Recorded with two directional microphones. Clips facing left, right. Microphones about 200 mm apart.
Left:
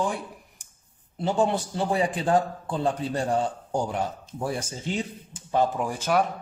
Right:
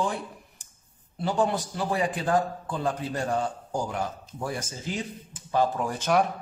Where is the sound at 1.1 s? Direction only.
25° left (ahead or behind).